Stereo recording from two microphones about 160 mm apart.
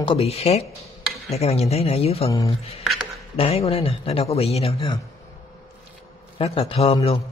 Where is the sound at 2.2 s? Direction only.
20° left (ahead or behind).